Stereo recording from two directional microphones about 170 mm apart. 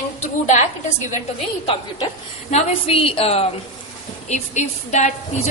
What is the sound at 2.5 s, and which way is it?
A woman's voice, 40° left (ahead or behind).